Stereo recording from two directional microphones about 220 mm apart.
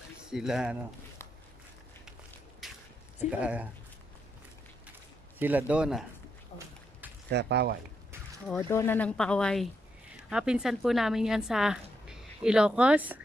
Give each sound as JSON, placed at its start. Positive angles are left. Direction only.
{"t": 0.2, "sound": "speech", "side_deg": 0}
{"t": 2.6, "sound": "a sound", "side_deg": 0}
{"t": 3.3, "sound": "a woman's voice", "side_deg": -5}
{"t": 5.4, "sound": "a woman's voice", "side_deg": -10}
{"t": 6.5, "sound": "a sound", "side_deg": 25}
{"t": 7.2, "sound": "speech", "side_deg": -50}
{"t": 8.5, "sound": "a woman's voice", "side_deg": 10}